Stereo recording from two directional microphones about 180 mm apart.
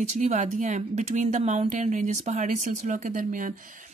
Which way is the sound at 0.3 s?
45° right (ahead or behind).